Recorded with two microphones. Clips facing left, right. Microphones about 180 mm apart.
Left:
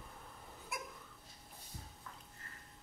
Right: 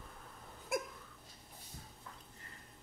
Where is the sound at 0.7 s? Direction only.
50° right (ahead or behind).